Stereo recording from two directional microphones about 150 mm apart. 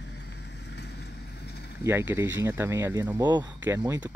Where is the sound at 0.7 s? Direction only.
90° left.